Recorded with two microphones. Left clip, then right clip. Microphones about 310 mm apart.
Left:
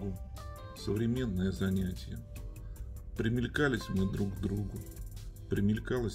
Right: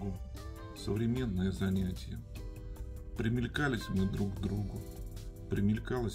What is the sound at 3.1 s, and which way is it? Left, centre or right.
Speech, centre.